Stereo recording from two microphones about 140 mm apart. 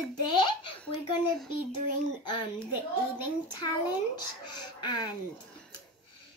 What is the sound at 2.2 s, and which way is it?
Child singing, 35° left (ahead or behind).